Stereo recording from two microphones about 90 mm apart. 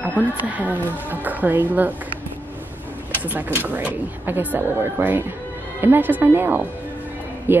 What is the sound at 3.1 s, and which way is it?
Speech, 20° right (ahead or behind).